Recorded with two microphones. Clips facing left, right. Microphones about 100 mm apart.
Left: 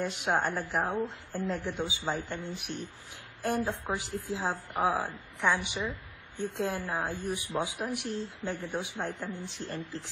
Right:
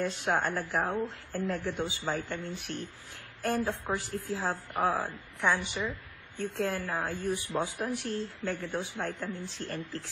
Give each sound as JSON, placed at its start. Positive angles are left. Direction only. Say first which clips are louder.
{"t": 0.0, "sound": "a woman's voice", "louder": "even", "side_deg": 15}